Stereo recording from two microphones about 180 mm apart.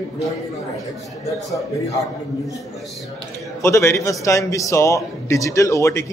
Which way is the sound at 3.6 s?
15° left (ahead or behind).